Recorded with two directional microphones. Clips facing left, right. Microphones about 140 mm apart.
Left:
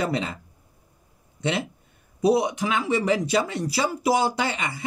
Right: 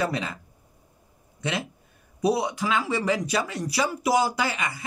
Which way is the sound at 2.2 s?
20° left (ahead or behind).